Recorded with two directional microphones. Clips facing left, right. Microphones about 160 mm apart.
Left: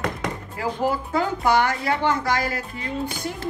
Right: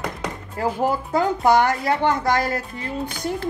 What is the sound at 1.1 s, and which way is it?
A woman's voice, 45° right (ahead or behind).